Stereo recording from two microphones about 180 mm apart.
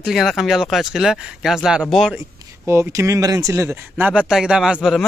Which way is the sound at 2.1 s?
15° right (ahead or behind).